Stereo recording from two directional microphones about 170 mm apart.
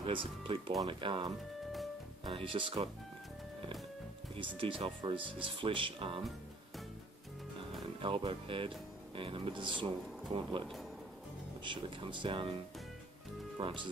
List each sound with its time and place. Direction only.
0.0 s speech: 30° right (ahead or behind)
4.6 s speech: 30° right (ahead or behind)
8.0 s speech: 30° right (ahead or behind)
11.6 s speech: 30° right (ahead or behind)
13.6 s speech: 30° right (ahead or behind)